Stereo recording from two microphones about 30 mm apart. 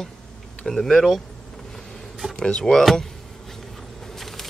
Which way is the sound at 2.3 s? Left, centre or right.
Left.